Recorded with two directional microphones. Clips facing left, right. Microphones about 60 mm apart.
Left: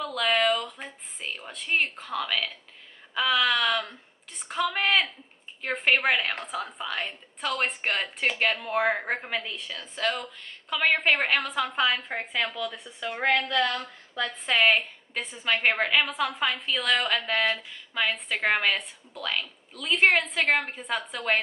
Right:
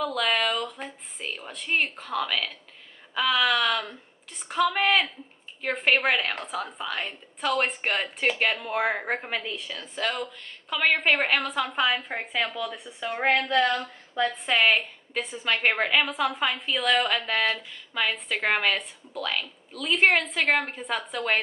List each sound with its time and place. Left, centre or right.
0.0 s a woman's voice: centre
14.2 s a woman's voice: centre